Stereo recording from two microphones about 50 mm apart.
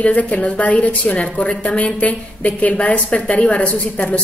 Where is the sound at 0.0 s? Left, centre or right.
Left.